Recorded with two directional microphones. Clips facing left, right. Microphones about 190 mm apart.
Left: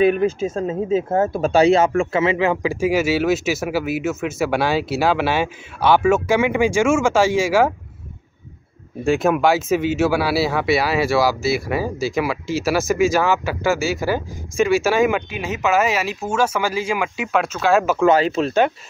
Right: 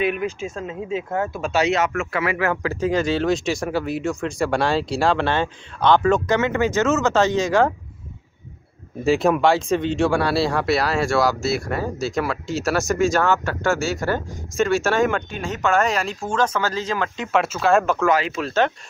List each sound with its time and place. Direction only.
0.0 s a man's voice: 35° left (ahead or behind); by 7.7 s 10° left (ahead or behind)
9.0 s speech: centre (ahead or behind)
18.0 s speech: 30° left (ahead or behind)